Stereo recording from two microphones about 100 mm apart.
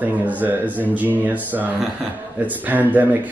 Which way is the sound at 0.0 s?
15° right (ahead or behind).